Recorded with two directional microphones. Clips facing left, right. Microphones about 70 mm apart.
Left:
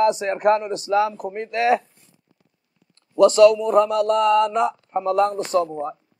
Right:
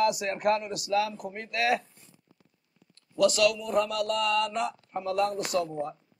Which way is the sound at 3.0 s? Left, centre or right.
Left.